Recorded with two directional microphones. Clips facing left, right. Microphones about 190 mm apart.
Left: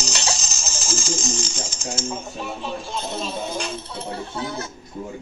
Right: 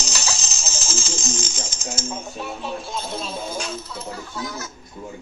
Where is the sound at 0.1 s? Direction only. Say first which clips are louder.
Left 2 dB; 30° left (ahead or behind).